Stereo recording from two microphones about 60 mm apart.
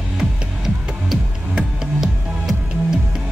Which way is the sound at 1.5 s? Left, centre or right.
Centre.